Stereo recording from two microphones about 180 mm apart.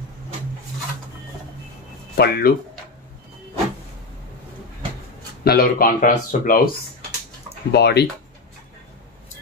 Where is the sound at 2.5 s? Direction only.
55° left (ahead or behind).